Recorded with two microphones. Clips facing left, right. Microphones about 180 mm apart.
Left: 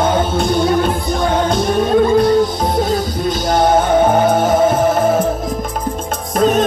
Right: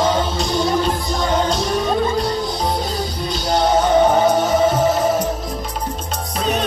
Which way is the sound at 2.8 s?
50° left (ahead or behind).